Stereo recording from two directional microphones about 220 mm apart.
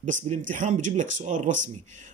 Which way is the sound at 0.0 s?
35° right (ahead or behind).